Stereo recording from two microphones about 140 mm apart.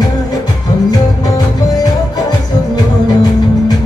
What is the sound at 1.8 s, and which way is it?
Music, 30° left (ahead or behind).